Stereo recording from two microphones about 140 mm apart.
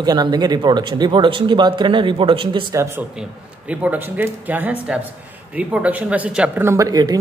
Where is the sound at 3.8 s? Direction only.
10° right (ahead or behind).